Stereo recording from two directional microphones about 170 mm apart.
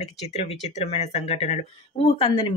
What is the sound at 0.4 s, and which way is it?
Speech, 40° left (ahead or behind).